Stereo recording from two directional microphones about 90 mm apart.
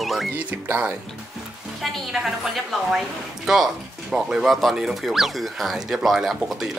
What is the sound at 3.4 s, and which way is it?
Speech, 5° right (ahead or behind).